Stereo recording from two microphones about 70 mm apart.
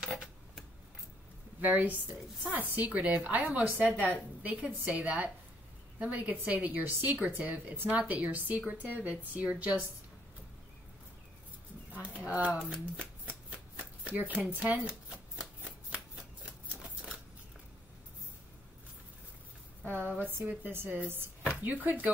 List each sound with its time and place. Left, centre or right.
0.0 s a sound: centre
1.6 s a woman's voice: right
11.9 s bird: centre
12.7 s speech: centre
14.9 s shuffling cards: centre
19.8 s a sound: right
20.7 s a woman's voice: right